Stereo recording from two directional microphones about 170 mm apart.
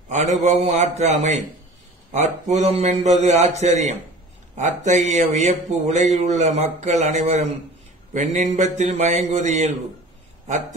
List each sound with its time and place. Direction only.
0.1 s speech: 40° right (ahead or behind)